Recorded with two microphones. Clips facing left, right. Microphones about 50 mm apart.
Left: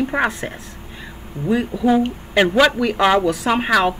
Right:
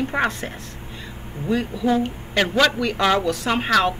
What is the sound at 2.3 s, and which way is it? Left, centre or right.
Speech, centre.